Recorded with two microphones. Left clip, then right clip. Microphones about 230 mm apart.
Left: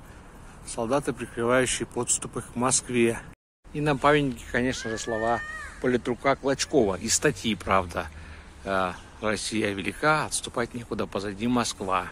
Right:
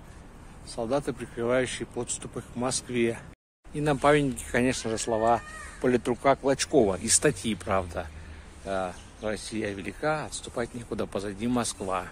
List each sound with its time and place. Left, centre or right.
0.7 s speech: centre